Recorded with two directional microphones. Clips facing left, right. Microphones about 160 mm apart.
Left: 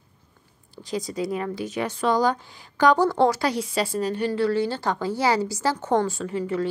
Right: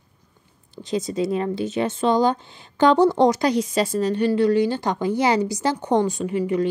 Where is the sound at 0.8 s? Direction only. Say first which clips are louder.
Right 4 dB; 25° right (ahead or behind).